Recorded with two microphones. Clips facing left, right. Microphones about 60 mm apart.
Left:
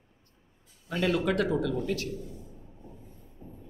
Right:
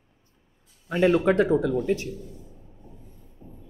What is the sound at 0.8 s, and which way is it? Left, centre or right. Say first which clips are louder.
Speech: right 7 dB; right.